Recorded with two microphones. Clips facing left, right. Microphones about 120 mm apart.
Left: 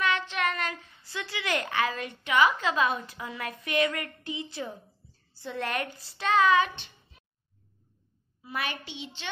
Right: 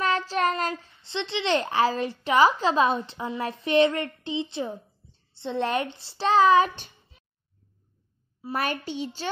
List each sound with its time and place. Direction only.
0.0 s a child's voice: 35° right (ahead or behind)
8.4 s a woman's voice: 40° right (ahead or behind)